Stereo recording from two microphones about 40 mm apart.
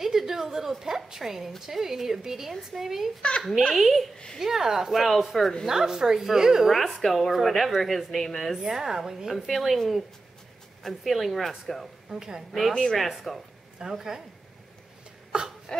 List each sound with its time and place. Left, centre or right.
0.0 s a woman's voice: centre
3.2 s a child's voice: left
3.7 s speech: centre
5.7 s speech: centre
6.7 s speech: centre
9.3 s speech: centre
10.8 s speech: centre
12.1 s speech: centre
12.5 s speech: centre
13.9 s speech: centre